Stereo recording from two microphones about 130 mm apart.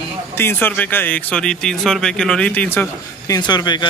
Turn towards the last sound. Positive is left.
turn(degrees=35)  # may be behind; listen again after turning